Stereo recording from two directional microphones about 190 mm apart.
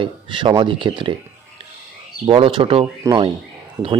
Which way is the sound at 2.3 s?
25° right (ahead or behind).